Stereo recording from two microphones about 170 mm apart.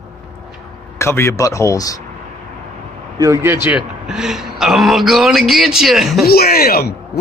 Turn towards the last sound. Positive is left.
turn(degrees=65)  # may be behind; listen again after turning